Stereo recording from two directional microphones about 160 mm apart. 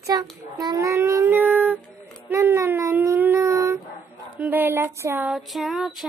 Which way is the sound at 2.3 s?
15° right (ahead or behind).